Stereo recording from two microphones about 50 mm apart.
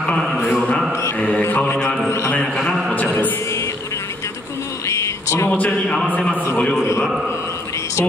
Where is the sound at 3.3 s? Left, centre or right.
Left.